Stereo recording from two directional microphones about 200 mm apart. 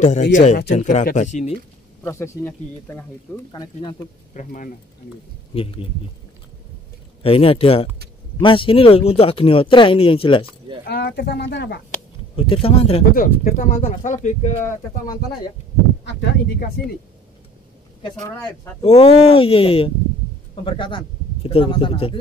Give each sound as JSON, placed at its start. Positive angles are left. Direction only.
{"t": 0.3, "sound": "speech", "side_deg": 35}
{"t": 2.0, "sound": "speech", "side_deg": 15}
{"t": 3.5, "sound": "speech", "side_deg": 20}
{"t": 4.3, "sound": "speech", "side_deg": 40}
{"t": 5.5, "sound": "speech", "side_deg": 25}
{"t": 7.2, "sound": "speech", "side_deg": 30}
{"t": 10.9, "sound": "speech", "side_deg": 55}
{"t": 12.4, "sound": "speech", "side_deg": 30}
{"t": 13.1, "sound": "speech", "side_deg": 45}
{"t": 16.2, "sound": "speech", "side_deg": 50}
{"t": 18.8, "sound": "speech", "side_deg": 30}